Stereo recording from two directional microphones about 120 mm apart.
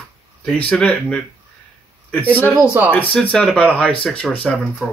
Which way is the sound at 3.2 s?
10° left (ahead or behind).